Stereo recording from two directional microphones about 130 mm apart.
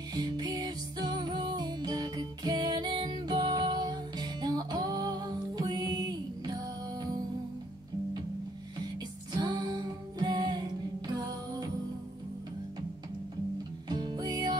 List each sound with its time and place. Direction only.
0.1 s music: 30° right (ahead or behind)
9.4 s music: 30° right (ahead or behind)
13.8 s music: 30° right (ahead or behind)